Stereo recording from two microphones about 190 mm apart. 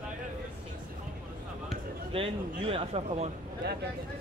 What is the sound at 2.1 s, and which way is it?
Speech, 30° right (ahead or behind).